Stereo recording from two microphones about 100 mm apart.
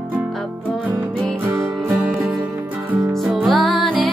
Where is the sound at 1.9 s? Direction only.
5° right (ahead or behind).